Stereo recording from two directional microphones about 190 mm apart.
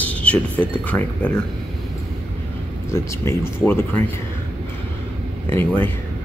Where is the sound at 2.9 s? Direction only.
15° left (ahead or behind).